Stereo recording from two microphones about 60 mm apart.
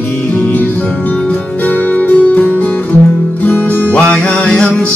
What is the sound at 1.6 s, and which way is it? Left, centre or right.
Music, left.